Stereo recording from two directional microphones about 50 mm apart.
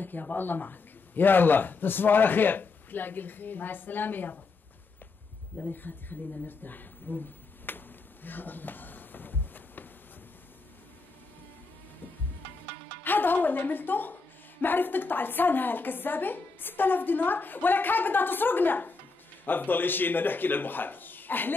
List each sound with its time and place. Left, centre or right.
0.0 s a woman's voice: left
5.6 s a woman's voice: left
7.6 s a sound: left
13.0 s a woman's voice: left